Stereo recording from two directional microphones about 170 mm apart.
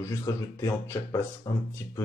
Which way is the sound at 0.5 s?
15° left (ahead or behind).